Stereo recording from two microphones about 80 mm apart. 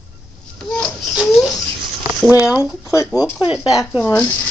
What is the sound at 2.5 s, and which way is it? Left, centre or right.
Speech, left.